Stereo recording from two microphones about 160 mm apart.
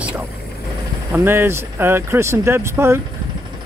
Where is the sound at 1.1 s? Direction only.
15° right (ahead or behind).